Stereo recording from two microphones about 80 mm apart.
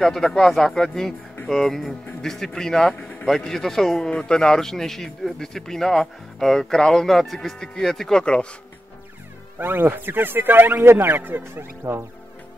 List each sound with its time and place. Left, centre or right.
0.0 s a man's voice: centre
3.0 s a sound: centre
3.3 s a man's voice: centre
9.6 s speech: right